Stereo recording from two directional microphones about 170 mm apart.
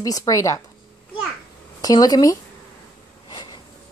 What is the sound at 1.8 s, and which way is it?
Speech, 20° left (ahead or behind).